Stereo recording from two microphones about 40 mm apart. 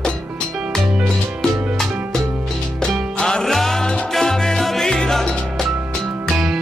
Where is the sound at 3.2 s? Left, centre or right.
Left.